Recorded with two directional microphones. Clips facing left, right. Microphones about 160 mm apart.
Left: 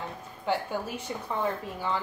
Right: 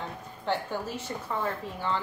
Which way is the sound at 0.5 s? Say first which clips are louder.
Left 1 dB; 15° left (ahead or behind).